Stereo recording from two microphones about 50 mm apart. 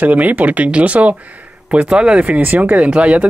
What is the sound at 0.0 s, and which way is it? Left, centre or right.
Speech, right.